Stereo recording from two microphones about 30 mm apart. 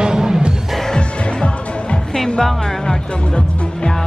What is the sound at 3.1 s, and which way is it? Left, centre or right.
Music, left.